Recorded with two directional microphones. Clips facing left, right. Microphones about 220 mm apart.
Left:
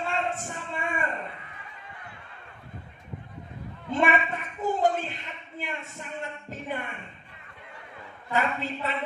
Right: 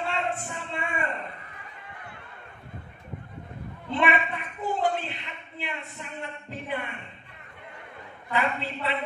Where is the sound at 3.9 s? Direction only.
45° left (ahead or behind).